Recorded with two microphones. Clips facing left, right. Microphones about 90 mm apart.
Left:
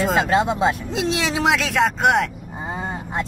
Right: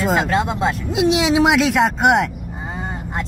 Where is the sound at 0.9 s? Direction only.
15° right (ahead or behind).